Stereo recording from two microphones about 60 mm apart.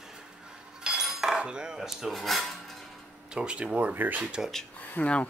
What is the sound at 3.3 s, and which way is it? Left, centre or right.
Speech, centre.